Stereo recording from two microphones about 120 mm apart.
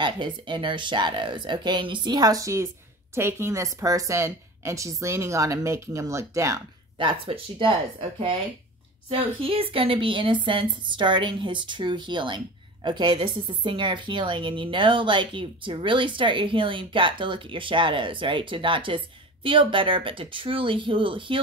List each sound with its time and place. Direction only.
0.0 s a woman's voice: 40° right (ahead or behind); by 6.6 s 25° right (ahead or behind)
7.0 s a woman's voice: 45° right (ahead or behind)
9.4 s a woman's voice: 50° right (ahead or behind)